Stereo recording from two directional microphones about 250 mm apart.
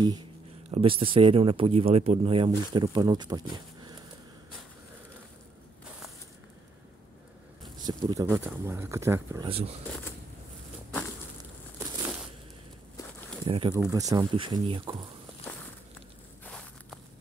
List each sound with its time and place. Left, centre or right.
0.7 s speech: right
7.8 s speech: centre
9.5 s speech: right
12.9 s a sound: centre
13.5 s speech: centre
16.4 s walk: centre